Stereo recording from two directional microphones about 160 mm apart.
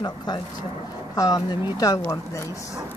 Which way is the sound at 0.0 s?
25° left (ahead or behind).